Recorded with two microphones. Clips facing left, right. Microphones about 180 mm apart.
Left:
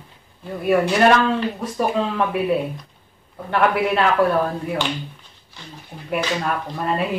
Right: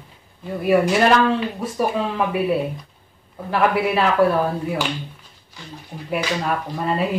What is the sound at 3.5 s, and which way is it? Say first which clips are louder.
Speech: even; centre (ahead or behind).